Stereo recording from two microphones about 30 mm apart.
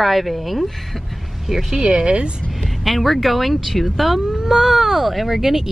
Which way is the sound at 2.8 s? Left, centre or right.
Centre.